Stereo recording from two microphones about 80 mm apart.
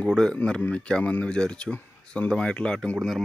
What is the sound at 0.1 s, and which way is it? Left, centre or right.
Speech, centre.